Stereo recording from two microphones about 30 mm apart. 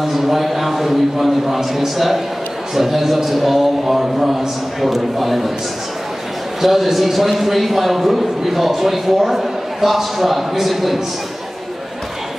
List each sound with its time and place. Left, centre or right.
0.0 s a man's voice: centre
6.6 s a man's voice: centre